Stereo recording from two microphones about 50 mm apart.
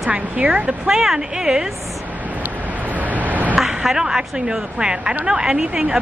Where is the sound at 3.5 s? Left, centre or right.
Centre.